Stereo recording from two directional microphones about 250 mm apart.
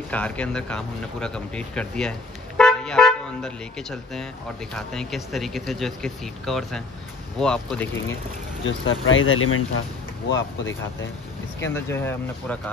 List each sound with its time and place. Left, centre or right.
0.1 s speech: centre
8.6 s speech: left
11.6 s speech: centre